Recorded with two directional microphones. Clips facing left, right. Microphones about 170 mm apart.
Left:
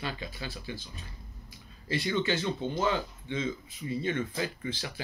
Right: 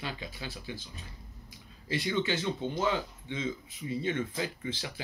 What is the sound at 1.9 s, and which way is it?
Speech, 15° right (ahead or behind).